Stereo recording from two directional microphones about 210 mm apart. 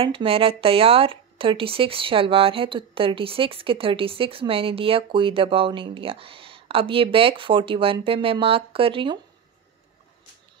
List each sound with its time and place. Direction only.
0.0 s speech: 25° right (ahead or behind)